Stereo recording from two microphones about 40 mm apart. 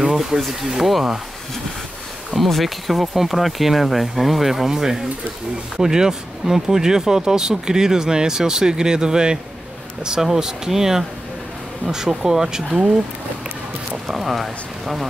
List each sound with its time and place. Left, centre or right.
0.0 s a sound: centre
0.4 s speech: centre
2.3 s speech: centre
14.0 s speech: centre